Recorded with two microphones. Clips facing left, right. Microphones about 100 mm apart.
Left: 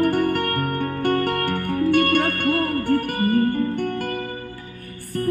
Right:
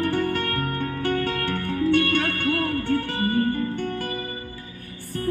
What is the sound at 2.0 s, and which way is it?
Music, 55° left (ahead or behind).